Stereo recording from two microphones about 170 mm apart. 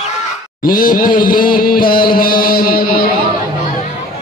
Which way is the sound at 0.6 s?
55° left (ahead or behind).